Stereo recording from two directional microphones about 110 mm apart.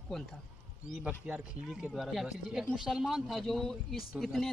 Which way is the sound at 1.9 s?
Centre (ahead or behind).